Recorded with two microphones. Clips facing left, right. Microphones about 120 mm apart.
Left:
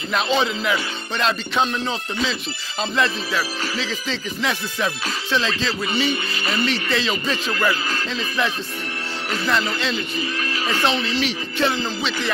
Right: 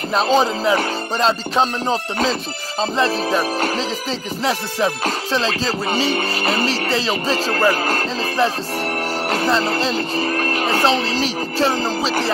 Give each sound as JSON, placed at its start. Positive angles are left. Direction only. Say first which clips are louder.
{"t": 0.1, "sound": "speech", "louder": "right 4 dB", "side_deg": -40}
{"t": 10.8, "sound": "speech", "louder": "right 2 dB", "side_deg": -35}